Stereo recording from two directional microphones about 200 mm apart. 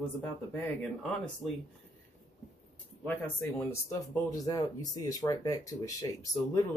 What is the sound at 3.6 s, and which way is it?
Speech, 15° left (ahead or behind).